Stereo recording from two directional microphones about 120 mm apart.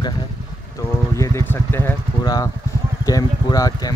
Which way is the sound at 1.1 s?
25° left (ahead or behind).